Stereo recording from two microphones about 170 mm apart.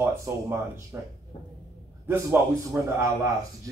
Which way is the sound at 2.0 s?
15° right (ahead or behind).